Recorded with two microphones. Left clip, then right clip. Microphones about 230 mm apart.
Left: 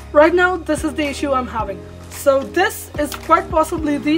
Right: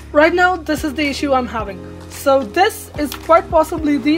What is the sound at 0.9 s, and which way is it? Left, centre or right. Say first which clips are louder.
Speech: right 2 dB; centre.